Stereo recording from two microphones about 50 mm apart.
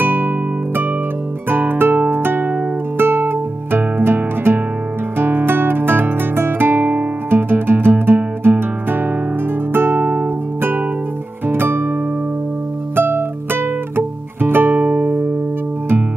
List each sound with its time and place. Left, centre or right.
0.0 s music: right
1.5 s music: right
5.1 s guitar: right
11.4 s music: right
12.9 s music: right
14.8 s music: right